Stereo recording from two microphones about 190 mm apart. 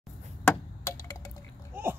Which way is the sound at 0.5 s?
15° left (ahead or behind).